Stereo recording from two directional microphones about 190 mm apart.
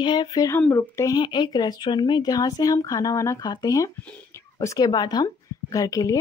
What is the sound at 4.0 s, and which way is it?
Speech, 5° left (ahead or behind).